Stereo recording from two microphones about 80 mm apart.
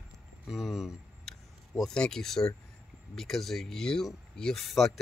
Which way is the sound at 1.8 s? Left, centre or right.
Centre.